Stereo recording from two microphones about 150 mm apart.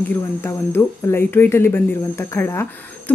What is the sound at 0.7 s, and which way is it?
Speech, 15° left (ahead or behind).